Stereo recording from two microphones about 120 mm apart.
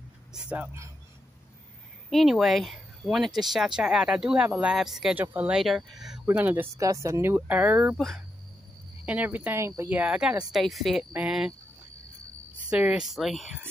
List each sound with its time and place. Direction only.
0.3 s speech: 10° right (ahead or behind)
2.0 s speech: centre (ahead or behind)
5.1 s speech: 15° right (ahead or behind)
5.6 s speech: centre (ahead or behind)
6.2 s speech: 15° right (ahead or behind)
6.8 s speech: 25° right (ahead or behind)
9.0 s speech: 15° right (ahead or behind)
12.6 s speech: 10° right (ahead or behind)